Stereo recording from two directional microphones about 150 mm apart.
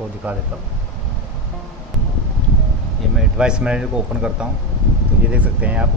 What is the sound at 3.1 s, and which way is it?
Speech, 5° right (ahead or behind).